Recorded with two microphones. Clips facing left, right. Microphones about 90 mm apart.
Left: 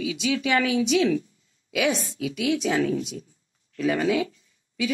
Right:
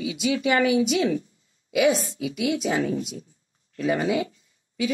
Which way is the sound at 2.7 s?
15° right (ahead or behind).